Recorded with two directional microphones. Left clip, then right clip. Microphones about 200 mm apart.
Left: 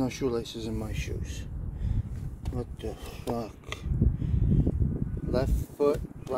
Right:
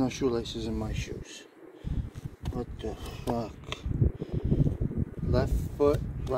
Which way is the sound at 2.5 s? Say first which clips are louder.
Right 1 dB; centre (ahead or behind).